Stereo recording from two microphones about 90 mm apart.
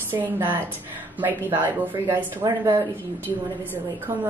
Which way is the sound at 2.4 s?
40° right (ahead or behind).